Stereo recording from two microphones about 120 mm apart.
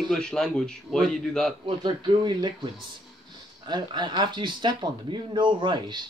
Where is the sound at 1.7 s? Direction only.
40° right (ahead or behind).